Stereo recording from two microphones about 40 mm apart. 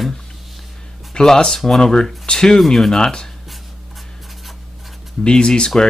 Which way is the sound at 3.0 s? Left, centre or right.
Left.